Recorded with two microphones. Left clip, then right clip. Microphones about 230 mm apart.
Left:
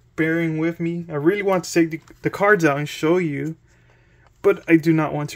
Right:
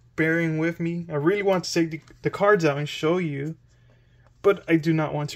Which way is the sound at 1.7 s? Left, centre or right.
Centre.